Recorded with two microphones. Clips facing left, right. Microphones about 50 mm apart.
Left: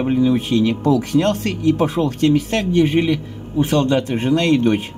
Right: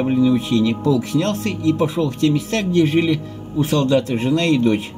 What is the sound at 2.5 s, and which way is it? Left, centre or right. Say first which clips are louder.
Speech: even; left.